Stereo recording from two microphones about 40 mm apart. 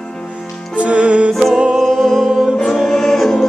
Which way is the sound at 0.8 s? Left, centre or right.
Right.